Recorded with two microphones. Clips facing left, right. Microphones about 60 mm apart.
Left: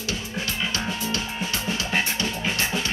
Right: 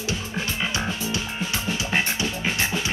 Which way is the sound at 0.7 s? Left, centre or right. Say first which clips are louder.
Right 1 dB; centre.